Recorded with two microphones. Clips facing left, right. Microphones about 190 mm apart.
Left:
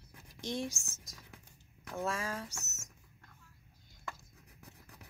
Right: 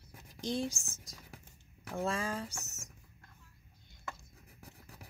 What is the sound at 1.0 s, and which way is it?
Whispering, 30° right (ahead or behind).